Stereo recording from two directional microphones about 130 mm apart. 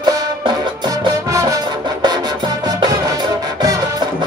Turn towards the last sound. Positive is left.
turn(degrees=-30)  # may be behind; listen again after turning